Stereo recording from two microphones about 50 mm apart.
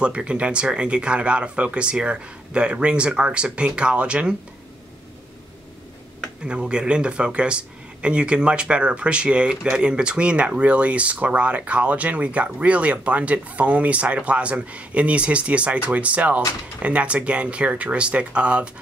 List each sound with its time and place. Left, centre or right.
0.0 s speech: right
6.7 s speech: centre